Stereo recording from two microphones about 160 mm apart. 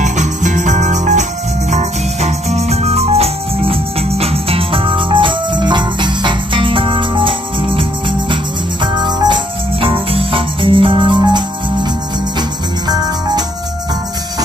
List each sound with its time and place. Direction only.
0.0 s music: 50° right (ahead or behind); by 7.8 s 35° right (ahead or behind)
8.8 s music: 30° right (ahead or behind)